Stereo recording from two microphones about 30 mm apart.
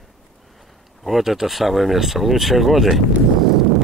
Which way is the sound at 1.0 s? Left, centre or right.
Centre.